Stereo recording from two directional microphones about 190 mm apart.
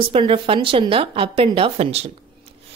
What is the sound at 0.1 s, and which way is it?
A woman's voice, 30° right (ahead or behind).